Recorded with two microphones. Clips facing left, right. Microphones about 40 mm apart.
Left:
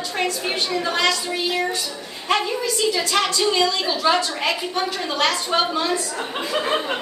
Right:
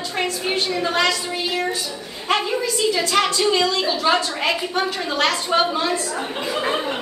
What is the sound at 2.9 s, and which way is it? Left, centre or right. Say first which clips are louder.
A woman's voice: right 2 dB; centre.